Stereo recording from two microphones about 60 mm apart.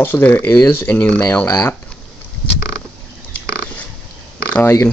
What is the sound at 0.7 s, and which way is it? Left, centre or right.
Speech, left.